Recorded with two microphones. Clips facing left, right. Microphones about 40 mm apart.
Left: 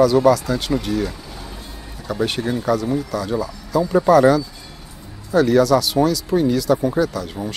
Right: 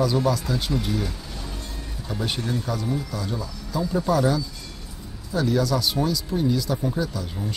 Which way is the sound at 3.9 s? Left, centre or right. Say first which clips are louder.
Left 8 dB; left.